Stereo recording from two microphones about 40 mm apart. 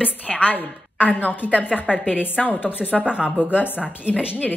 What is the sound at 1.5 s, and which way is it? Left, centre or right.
Speech, right.